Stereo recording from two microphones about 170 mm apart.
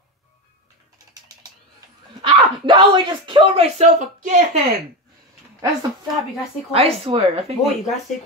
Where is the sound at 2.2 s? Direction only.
30° right (ahead or behind); by 4.6 s 45° right (ahead or behind).